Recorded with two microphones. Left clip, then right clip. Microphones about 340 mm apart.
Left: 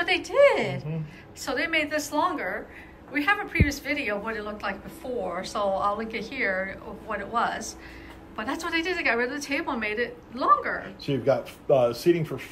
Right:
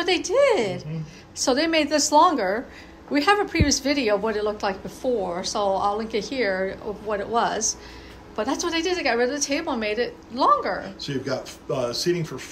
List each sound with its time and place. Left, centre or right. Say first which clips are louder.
0.3 s a woman's voice: even; centre
11.0 s speech: left 4 dB; centre